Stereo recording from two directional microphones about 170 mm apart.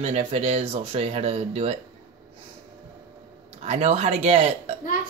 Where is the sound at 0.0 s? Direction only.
35° right (ahead or behind).